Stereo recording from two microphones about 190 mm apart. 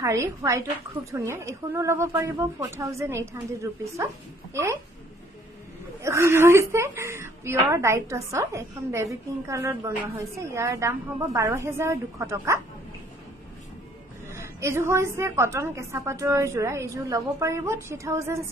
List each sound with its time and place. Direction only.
0.0 s a woman's voice: 15° right (ahead or behind)
6.0 s a woman's voice: 15° right (ahead or behind)
14.3 s a woman's voice: 15° right (ahead or behind)